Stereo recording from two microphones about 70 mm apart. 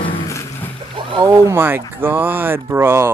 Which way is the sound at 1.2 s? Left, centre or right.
Right.